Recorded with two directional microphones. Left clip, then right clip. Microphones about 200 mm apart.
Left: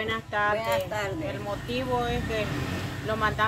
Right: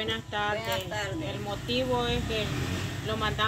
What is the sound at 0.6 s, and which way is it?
Speech, 20° left (ahead or behind).